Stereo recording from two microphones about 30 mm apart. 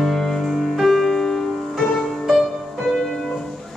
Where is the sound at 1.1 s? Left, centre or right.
Centre.